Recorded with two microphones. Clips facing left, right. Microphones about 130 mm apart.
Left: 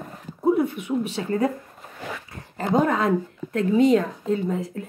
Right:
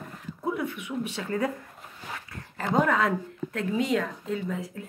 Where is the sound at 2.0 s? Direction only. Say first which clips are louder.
Left 6 dB; 75° left (ahead or behind).